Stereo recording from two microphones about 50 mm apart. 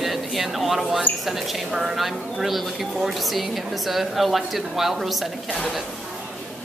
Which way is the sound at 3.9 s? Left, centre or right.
Centre.